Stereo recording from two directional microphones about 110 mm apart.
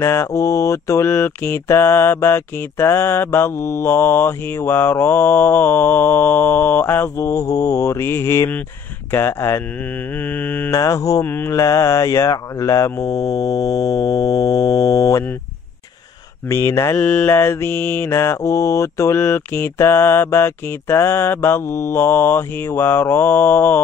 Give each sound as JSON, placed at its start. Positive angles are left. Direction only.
{"t": 0.0, "sound": "mantra", "side_deg": 25}
{"t": 10.8, "sound": "mantra", "side_deg": 30}
{"t": 11.2, "sound": "mantra", "side_deg": 20}
{"t": 16.4, "sound": "mantra", "side_deg": 25}
{"t": 17.0, "sound": "mantra", "side_deg": 10}
{"t": 17.4, "sound": "mantra", "side_deg": 25}